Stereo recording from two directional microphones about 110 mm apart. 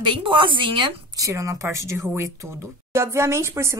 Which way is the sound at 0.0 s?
50° right (ahead or behind).